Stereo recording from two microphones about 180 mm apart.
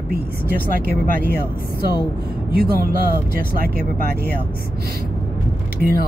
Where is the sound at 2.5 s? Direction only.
55° right (ahead or behind).